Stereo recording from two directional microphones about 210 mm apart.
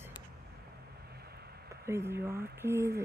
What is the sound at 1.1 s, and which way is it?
Vehicle, 50° right (ahead or behind).